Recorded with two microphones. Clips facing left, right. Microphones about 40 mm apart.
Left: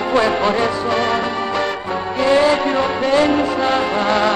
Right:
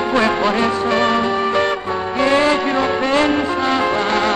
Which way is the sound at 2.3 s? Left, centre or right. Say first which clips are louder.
Left 2 dB; right.